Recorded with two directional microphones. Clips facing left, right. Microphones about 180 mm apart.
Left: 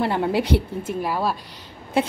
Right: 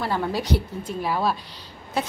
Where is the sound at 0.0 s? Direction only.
25° left (ahead or behind).